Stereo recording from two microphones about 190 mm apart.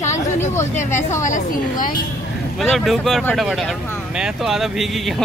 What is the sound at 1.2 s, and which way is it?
Speech, 45° left (ahead or behind).